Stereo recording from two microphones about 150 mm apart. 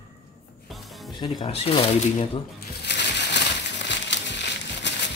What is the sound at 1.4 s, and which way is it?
Speech, 45° left (ahead or behind).